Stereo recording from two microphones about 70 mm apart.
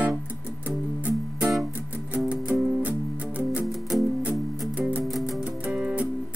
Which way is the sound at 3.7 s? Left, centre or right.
Centre.